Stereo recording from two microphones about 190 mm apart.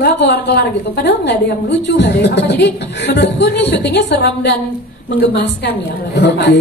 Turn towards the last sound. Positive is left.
turn(degrees=65)  # may be behind; listen again after turning